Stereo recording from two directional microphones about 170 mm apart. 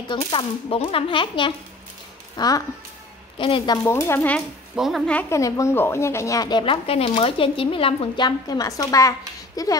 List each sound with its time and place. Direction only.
0.1 s a woman's voice: 30° left (ahead or behind)
3.8 s speech: 15° left (ahead or behind)
4.7 s a woman's voice: centre (ahead or behind)
5.3 s a woman's voice: 15° left (ahead or behind)